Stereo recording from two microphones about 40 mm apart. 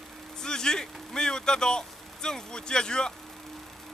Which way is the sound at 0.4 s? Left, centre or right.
Centre.